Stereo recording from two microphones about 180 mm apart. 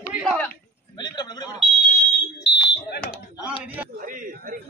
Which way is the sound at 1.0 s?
25° left (ahead or behind).